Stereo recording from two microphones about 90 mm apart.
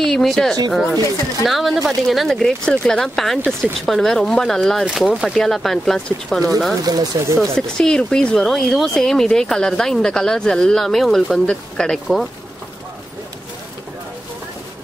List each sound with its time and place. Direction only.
0.0 s speech: 5° left (ahead or behind)
6.8 s speech: 45° right (ahead or behind)
7.3 s speech: 5° left (ahead or behind)